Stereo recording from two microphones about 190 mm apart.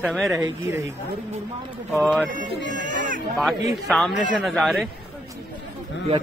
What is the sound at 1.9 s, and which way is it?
Speech, centre (ahead or behind).